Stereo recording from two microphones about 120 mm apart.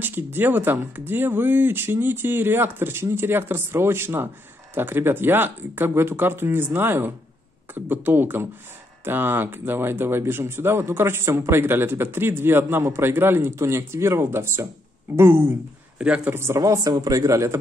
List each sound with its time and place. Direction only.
0.0 s speech: 15° right (ahead or behind)
16.0 s speech: 10° right (ahead or behind)
16.3 s speech: 25° right (ahead or behind)